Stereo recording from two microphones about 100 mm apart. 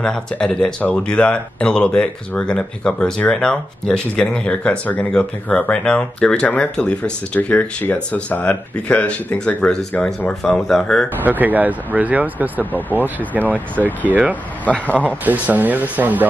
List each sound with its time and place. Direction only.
0.0 s speech: 5° left (ahead or behind)
11.2 s speech: 15° right (ahead or behind)
14.6 s speech: 15° left (ahead or behind)
15.2 s speech: 15° right (ahead or behind)